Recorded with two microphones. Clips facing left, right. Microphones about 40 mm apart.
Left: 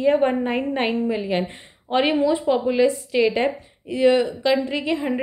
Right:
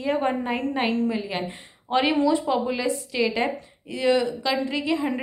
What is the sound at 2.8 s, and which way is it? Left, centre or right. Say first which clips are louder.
A woman's voice: left 6 dB; left.